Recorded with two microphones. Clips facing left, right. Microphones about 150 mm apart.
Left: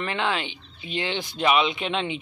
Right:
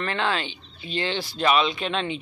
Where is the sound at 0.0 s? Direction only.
15° left (ahead or behind).